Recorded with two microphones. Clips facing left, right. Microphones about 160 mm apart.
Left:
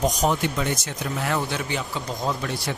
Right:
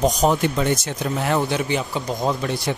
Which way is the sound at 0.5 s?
30° right (ahead or behind).